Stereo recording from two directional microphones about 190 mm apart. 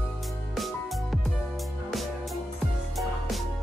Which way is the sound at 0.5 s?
Centre (ahead or behind).